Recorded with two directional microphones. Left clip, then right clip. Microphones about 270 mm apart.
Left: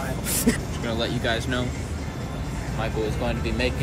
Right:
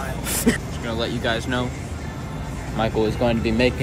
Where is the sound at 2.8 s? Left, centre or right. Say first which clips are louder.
Right 7 dB; right.